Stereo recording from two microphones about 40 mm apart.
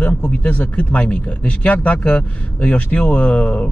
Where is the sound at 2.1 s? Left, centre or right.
Left.